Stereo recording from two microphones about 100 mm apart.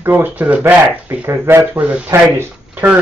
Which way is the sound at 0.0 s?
20° right (ahead or behind).